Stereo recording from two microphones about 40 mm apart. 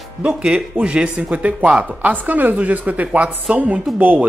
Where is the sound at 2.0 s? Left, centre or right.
Right.